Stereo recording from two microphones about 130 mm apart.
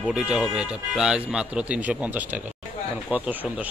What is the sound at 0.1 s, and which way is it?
A man's voice, 10° right (ahead or behind).